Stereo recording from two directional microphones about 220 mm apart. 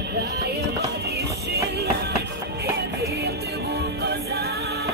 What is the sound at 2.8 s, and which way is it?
Music, 45° right (ahead or behind).